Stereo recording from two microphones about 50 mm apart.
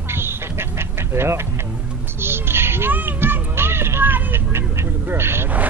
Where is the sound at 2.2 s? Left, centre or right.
Right.